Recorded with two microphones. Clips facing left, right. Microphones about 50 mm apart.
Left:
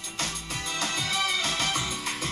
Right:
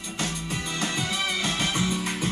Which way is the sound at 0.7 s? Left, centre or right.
Right.